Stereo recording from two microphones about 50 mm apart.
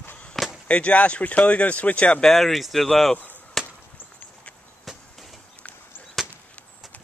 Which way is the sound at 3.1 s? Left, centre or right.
Left.